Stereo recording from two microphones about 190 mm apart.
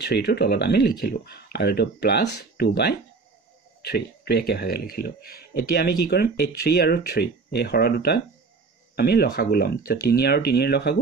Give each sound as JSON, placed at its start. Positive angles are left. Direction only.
{"t": 0.0, "sound": "speech", "side_deg": 60}